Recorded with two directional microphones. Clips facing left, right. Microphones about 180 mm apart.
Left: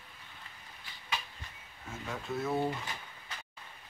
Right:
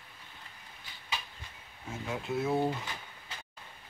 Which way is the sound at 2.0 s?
15° right (ahead or behind).